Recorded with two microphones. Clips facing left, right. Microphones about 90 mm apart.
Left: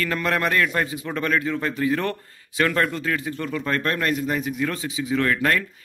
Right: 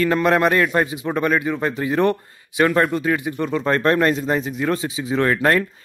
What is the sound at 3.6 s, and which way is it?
Speech, 30° right (ahead or behind).